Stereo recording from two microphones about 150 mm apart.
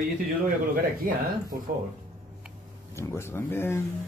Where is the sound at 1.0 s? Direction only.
70° right (ahead or behind).